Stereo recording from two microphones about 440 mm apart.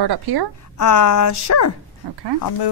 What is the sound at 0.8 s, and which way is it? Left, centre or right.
Speech, left.